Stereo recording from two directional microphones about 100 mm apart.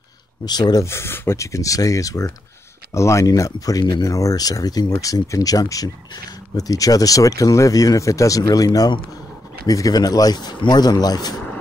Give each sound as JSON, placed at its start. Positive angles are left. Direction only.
{"t": 0.5, "sound": "speech", "side_deg": 45}
{"t": 0.8, "sound": "speech", "side_deg": 25}